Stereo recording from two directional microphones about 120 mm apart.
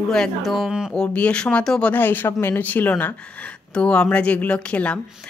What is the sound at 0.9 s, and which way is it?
Speech, 10° left (ahead or behind).